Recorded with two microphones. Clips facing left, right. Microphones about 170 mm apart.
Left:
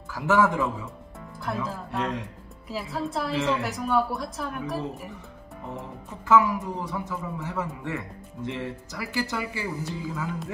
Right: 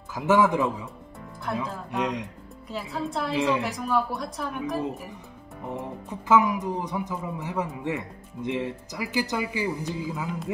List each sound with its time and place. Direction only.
0.1 s speech: 20° right (ahead or behind)
2.7 s speech: centre (ahead or behind)
5.7 s speech: 20° right (ahead or behind)